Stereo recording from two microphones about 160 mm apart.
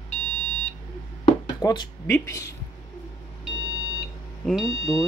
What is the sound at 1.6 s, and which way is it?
Speech, 25° left (ahead or behind).